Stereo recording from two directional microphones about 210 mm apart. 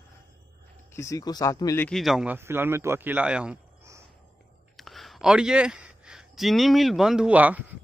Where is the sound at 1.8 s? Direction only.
Centre (ahead or behind).